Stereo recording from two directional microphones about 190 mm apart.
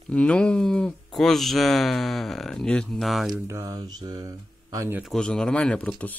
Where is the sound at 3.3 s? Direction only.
15° right (ahead or behind).